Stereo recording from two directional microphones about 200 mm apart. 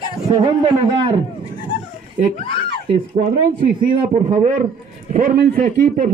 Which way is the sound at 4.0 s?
30° right (ahead or behind).